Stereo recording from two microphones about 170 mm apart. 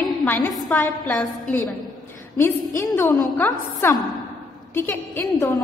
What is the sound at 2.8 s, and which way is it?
A man's voice, 20° left (ahead or behind).